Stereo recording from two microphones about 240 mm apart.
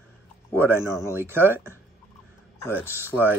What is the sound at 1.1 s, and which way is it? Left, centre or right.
Speech, centre.